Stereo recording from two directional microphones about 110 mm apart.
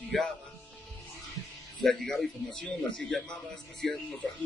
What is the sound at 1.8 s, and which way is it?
A man's voice, 5° left (ahead or behind).